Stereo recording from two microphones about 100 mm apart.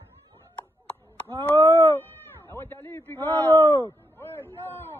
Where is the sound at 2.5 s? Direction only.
20° left (ahead or behind).